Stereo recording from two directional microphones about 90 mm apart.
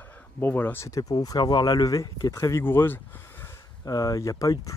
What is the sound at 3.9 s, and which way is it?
Speech, 40° left (ahead or behind).